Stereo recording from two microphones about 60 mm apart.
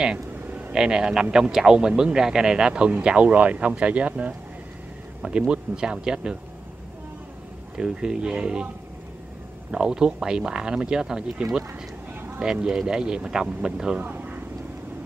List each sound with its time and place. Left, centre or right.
0.5 s vehicle: right
0.7 s speech: centre
5.5 s speech: centre
7.7 s speech: centre
9.7 s speech: centre
12.1 s a sound: right
12.4 s speech: centre
14.0 s a sound: right